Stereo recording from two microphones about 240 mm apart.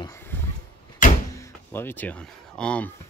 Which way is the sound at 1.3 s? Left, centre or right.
Centre.